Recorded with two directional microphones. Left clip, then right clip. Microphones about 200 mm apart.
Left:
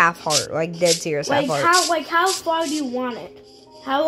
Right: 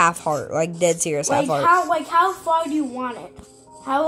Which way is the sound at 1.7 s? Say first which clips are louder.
Right 1 dB; 55° left (ahead or behind).